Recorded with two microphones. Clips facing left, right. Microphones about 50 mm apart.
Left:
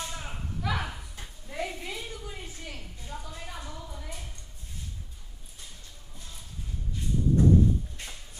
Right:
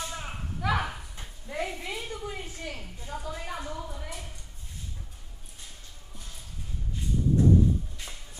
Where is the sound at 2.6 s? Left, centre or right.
Right.